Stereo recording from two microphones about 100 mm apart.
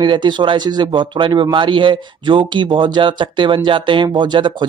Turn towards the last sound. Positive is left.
turn(degrees=-50)  # may be behind; listen again after turning